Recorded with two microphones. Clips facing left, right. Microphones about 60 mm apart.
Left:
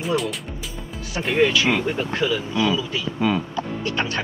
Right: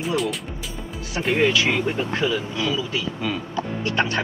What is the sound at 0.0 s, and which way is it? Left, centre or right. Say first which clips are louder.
Speech: even; centre.